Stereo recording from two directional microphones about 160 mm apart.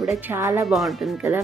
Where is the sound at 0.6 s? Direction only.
Centre (ahead or behind).